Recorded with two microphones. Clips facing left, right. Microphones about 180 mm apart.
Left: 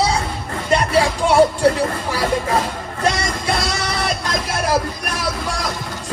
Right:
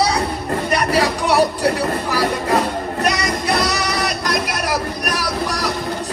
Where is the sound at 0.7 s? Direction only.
25° left (ahead or behind).